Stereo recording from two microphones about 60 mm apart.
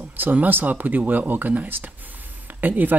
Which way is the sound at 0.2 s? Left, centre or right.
Right.